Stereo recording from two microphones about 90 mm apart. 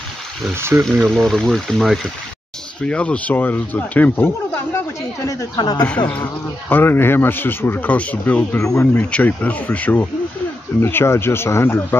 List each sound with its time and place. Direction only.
0.6 s speech: 30° right (ahead or behind)
1.1 s speech: 5° left (ahead or behind)
2.8 s speech: 10° left (ahead or behind); by 5.5 s 35° left (ahead or behind)
5.6 s speech: 45° left (ahead or behind)
5.9 s a man's voice: 15° left (ahead or behind)
8.5 s a man's voice: 30° left (ahead or behind)